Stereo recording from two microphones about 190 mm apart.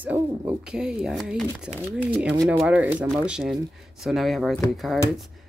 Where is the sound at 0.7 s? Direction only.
5° right (ahead or behind).